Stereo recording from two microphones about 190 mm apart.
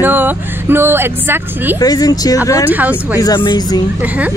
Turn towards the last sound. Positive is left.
turn(degrees=25)  # may be behind; listen again after turning